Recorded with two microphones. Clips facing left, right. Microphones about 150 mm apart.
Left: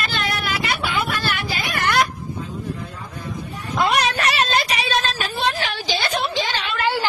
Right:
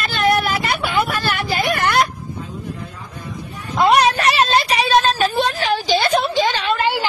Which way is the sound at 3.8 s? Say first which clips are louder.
Right 6 dB; 30° right (ahead or behind).